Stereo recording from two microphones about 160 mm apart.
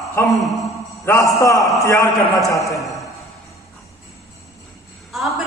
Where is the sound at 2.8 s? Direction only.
Centre (ahead or behind).